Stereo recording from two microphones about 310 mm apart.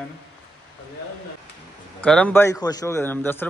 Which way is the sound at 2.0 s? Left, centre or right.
Centre.